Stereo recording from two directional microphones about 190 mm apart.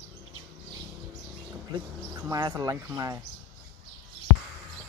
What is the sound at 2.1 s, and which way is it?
Speech, 20° right (ahead or behind).